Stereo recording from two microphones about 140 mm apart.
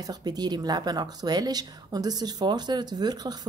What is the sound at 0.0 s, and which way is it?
Speech, 30° right (ahead or behind).